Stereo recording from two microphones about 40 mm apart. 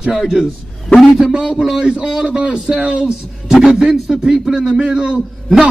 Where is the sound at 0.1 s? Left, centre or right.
Centre.